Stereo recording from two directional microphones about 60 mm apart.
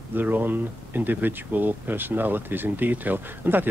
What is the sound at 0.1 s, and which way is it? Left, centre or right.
Speech, right.